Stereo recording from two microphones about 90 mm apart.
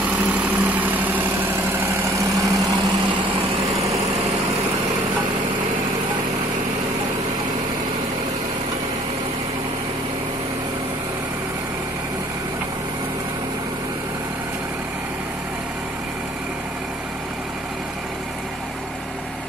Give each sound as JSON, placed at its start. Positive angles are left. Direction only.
{"t": 0.3, "sound": "vehicle", "side_deg": -20}
{"t": 2.1, "sound": "vehicle", "side_deg": -35}